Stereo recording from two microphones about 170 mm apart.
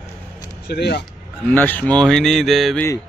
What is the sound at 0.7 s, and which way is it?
Speech, 75° left (ahead or behind).